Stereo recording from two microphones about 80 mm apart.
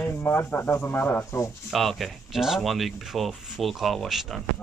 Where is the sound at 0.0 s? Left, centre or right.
Left.